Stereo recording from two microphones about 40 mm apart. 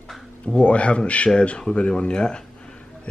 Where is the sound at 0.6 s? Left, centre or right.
Left.